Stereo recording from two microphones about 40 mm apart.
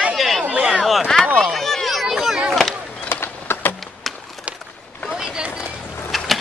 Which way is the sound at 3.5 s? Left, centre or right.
Left.